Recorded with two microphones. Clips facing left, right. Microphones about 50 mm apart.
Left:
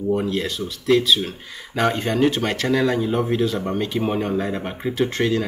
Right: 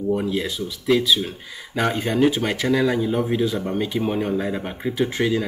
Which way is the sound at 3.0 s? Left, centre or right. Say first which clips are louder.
Left 1 dB; centre.